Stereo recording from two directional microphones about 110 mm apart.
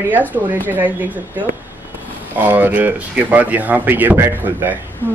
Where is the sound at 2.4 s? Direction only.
15° right (ahead or behind).